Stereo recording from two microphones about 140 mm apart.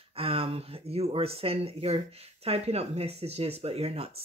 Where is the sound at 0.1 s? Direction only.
45° right (ahead or behind).